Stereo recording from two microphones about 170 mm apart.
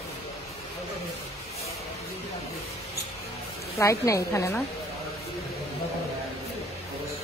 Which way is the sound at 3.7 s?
20° left (ahead or behind).